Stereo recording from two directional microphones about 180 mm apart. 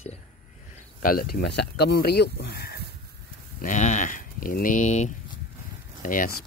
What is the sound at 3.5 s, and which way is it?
Speech, 45° left (ahead or behind).